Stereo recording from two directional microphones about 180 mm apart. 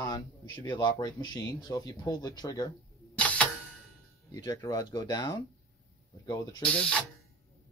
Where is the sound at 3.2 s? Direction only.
5° left (ahead or behind).